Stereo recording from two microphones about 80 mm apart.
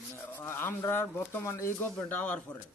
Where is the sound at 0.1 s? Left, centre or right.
Left.